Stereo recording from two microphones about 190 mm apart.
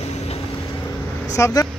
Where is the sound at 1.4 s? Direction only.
15° left (ahead or behind).